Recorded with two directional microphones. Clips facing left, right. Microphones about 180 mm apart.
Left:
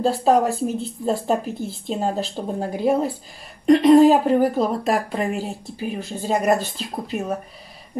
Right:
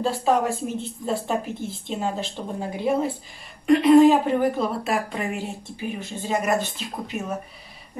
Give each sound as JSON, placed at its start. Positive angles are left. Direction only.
{"t": 0.0, "sound": "speech", "side_deg": 35}